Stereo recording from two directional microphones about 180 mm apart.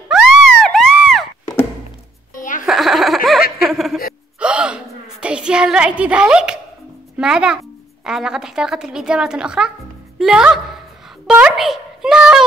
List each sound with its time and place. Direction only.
0.1 s a sound: centre (ahead or behind)
2.3 s music: 45° left (ahead or behind)
2.6 s a sound: centre (ahead or behind)
3.6 s speech: centre (ahead or behind)
4.4 s gasp: 5° right (ahead or behind)
7.2 s a woman's voice: 5° right (ahead or behind)